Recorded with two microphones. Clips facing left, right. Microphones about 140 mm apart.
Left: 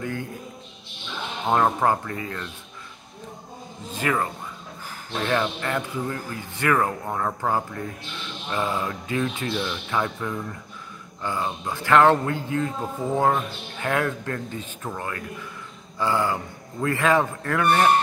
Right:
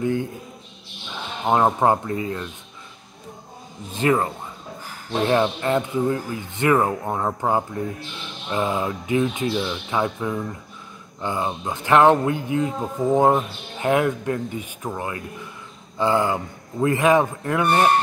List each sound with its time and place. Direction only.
0.0 s a sound: 20° right (ahead or behind)
1.5 s speech: 20° right (ahead or behind)
3.9 s speech: 25° right (ahead or behind)